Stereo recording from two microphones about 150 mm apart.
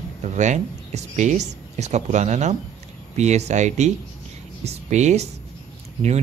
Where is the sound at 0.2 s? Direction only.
50° right (ahead or behind).